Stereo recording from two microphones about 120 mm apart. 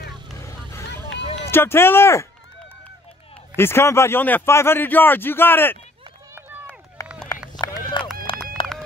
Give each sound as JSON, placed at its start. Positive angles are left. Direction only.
{"t": 0.4, "sound": "vehicle", "side_deg": 25}
{"t": 1.2, "sound": "a sound", "side_deg": 50}
{"t": 1.5, "sound": "a man's voice", "side_deg": 20}
{"t": 3.5, "sound": "a man's voice", "side_deg": 20}
{"t": 6.3, "sound": "run", "side_deg": -15}
{"t": 7.0, "sound": "run", "side_deg": 25}
{"t": 8.3, "sound": "run", "side_deg": 45}